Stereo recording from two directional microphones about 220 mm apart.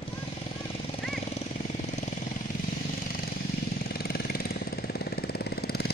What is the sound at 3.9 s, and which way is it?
Vehicle, 45° left (ahead or behind).